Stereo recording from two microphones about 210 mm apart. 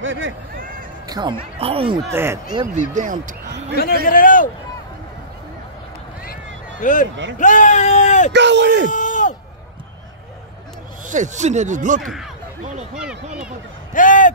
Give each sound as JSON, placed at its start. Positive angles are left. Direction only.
{"t": 0.0, "sound": "speech", "side_deg": -65}
{"t": 1.0, "sound": "a sound", "side_deg": -20}
{"t": 1.6, "sound": "speech", "side_deg": -25}
{"t": 2.0, "sound": "speech", "side_deg": -10}
{"t": 2.9, "sound": "speech", "side_deg": -40}
{"t": 3.7, "sound": "a man's voice", "side_deg": 45}
{"t": 6.8, "sound": "a man's voice", "side_deg": 35}
{"t": 8.3, "sound": "speech", "side_deg": -55}
{"t": 8.9, "sound": "a sound", "side_deg": 35}
{"t": 11.1, "sound": "speech", "side_deg": -35}
{"t": 12.9, "sound": "speech", "side_deg": -5}
{"t": 13.9, "sound": "a sound", "side_deg": 40}